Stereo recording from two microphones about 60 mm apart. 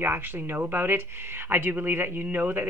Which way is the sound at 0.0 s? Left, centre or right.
Right.